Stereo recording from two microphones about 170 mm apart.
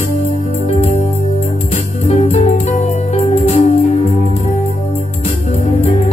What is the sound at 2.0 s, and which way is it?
Music, 40° left (ahead or behind).